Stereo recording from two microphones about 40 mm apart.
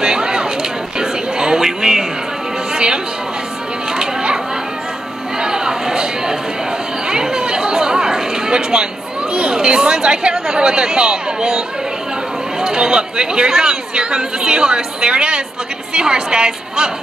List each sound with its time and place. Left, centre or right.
0.0 s a sound: centre
2.7 s chatter: centre
3.9 s children playing: centre
5.4 s a sound: centre
7.1 s chatter: centre
9.3 s speech: right